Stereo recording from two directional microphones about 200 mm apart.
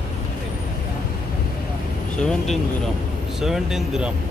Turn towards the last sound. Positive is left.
turn(degrees=-5)  # may be behind; listen again after turning